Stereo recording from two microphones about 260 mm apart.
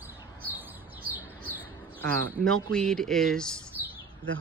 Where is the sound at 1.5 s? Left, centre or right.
Centre.